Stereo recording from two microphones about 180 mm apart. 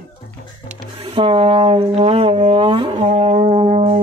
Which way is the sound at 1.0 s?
30° right (ahead or behind).